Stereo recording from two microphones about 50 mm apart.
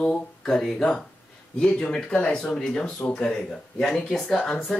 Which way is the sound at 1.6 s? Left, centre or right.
Left.